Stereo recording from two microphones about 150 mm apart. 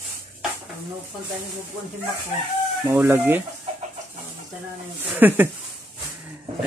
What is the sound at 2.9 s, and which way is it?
Speech, 15° right (ahead or behind).